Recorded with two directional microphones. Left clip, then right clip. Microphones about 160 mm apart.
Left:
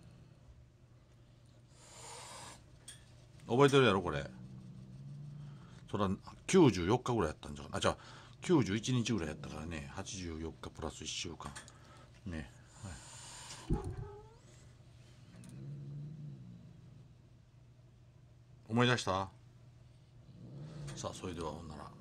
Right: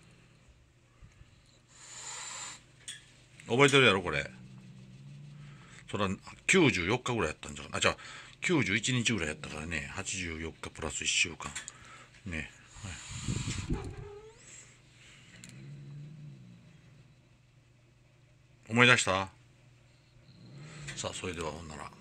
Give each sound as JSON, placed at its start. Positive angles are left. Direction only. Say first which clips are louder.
{"t": 3.4, "sound": "speech", "louder": "right 4 dB", "side_deg": -5}
{"t": 5.7, "sound": "speech", "louder": "right 3 dB", "side_deg": 0}
{"t": 9.1, "sound": "speech", "louder": "right 5 dB", "side_deg": -15}
{"t": 12.3, "sound": "a sound", "louder": "right 8 dB", "side_deg": -20}
{"t": 18.7, "sound": "speech", "louder": "right 9 dB", "side_deg": -15}
{"t": 20.6, "sound": "vehicle", "louder": "right 5 dB", "side_deg": -15}
{"t": 21.2, "sound": "speech", "louder": "right 5 dB", "side_deg": -20}
{"t": 21.6, "sound": "speech", "louder": "right 6 dB", "side_deg": -30}